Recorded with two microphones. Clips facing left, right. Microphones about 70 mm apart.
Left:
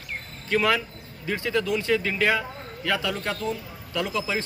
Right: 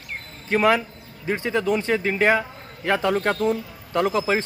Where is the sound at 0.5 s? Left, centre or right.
Right.